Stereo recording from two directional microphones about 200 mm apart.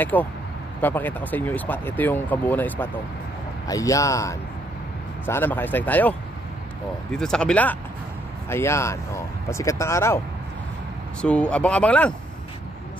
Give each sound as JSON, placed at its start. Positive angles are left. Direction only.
{"t": 0.0, "sound": "speech", "side_deg": 10}